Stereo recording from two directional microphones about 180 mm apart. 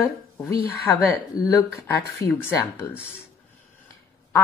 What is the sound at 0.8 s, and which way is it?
A woman's voice, 20° left (ahead or behind).